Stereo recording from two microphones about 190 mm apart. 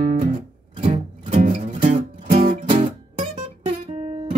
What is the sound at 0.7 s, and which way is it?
Music, 30° right (ahead or behind).